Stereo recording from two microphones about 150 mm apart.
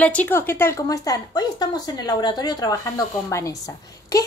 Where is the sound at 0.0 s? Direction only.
10° left (ahead or behind).